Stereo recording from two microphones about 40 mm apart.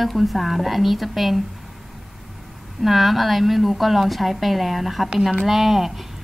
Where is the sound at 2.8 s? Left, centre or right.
Centre.